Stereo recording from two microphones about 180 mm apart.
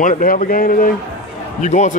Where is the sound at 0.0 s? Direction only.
50° left (ahead or behind).